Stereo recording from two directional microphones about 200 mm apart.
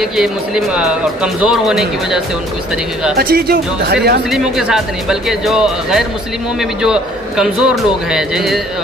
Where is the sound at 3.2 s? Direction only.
50° right (ahead or behind).